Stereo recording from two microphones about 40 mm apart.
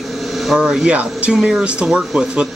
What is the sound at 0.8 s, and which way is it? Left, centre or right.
Speech, right.